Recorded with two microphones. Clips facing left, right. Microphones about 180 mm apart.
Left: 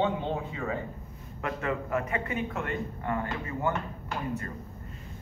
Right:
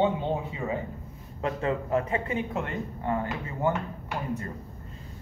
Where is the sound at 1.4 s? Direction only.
30° right (ahead or behind).